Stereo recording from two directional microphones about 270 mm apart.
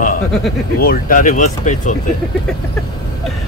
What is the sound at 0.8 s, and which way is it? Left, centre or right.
Speech, left.